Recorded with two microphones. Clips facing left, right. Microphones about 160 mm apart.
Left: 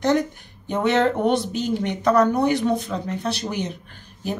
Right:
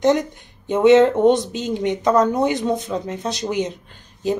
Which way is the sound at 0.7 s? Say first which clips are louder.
Right 7 dB; 20° right (ahead or behind).